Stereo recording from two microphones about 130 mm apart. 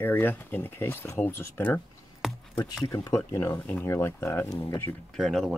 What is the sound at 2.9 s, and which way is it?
Speech, 25° left (ahead or behind).